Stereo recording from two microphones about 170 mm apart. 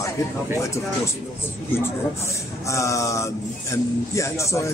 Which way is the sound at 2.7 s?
20° left (ahead or behind).